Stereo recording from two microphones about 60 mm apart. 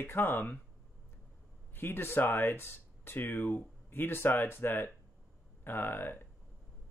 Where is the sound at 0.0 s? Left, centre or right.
Left.